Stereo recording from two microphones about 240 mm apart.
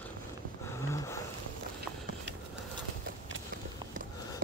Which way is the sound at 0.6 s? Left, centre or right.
Centre.